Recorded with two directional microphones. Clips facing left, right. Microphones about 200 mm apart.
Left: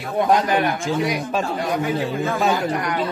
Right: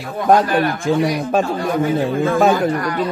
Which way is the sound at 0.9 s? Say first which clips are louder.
Right 5 dB; 55° right (ahead or behind).